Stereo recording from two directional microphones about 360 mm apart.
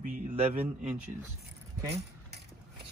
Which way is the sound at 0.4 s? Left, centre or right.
Centre.